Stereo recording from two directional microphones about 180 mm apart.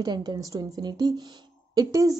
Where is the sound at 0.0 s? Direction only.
20° right (ahead or behind).